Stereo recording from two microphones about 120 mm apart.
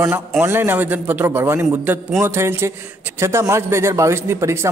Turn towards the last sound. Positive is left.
turn(degrees=-20)  # may be behind; listen again after turning